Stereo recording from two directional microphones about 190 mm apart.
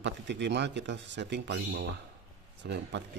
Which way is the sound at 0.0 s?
65° right (ahead or behind).